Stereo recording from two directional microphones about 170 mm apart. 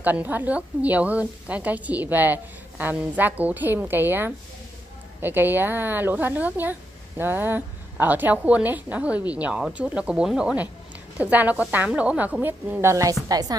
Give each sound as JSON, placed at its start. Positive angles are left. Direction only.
{"t": 0.0, "sound": "a woman's voice", "side_deg": -10}